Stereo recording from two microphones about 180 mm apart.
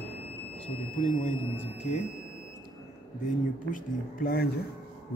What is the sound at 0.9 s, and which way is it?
Speech, 40° left (ahead or behind).